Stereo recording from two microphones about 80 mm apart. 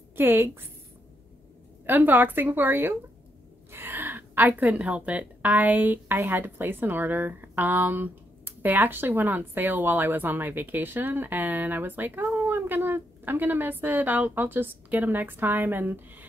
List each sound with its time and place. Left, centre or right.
0.1 s a woman's voice: right
1.9 s a woman's voice: right